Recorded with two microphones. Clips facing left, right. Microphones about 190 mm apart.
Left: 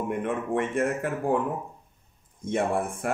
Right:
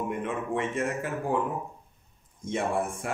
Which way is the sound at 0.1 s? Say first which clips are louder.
Left 3 dB; 55° left (ahead or behind).